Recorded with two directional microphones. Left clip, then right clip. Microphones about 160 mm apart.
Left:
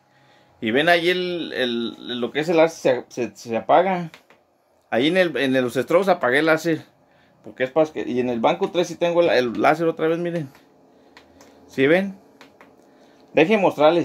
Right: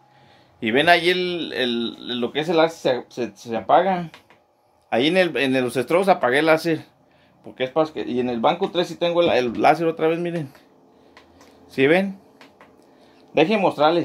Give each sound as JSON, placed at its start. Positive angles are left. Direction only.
{"t": 0.6, "sound": "speech", "side_deg": 5}
{"t": 2.3, "sound": "speech", "side_deg": 20}
{"t": 11.6, "sound": "speech", "side_deg": 10}
{"t": 13.3, "sound": "speech", "side_deg": 20}